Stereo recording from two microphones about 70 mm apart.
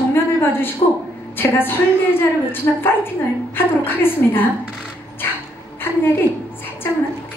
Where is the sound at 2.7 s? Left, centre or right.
Left.